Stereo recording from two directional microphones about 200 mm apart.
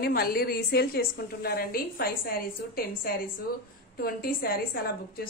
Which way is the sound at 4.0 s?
45° left (ahead or behind).